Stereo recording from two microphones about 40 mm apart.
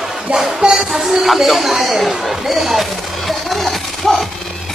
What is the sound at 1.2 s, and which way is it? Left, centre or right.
Chatter, centre.